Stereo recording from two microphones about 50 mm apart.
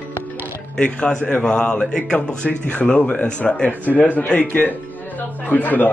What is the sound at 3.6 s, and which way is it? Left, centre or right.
Speech, left.